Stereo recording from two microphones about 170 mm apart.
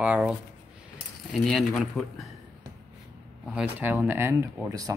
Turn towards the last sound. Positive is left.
turn(degrees=-15)  # may be behind; listen again after turning